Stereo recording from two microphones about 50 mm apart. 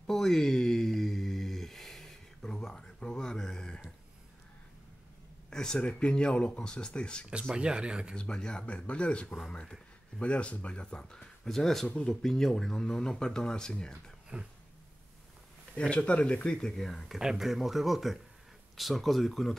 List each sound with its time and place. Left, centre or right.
0.0 s a sound: centre
5.5 s speech: centre
7.5 s speech: centre
8.2 s speech: centre
15.7 s speech: left
16.7 s speech: centre
17.2 s speech: centre